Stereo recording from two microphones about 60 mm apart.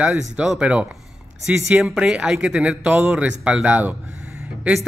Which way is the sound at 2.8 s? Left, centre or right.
Right.